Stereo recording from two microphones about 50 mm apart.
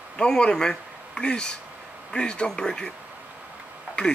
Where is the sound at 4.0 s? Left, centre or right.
Left.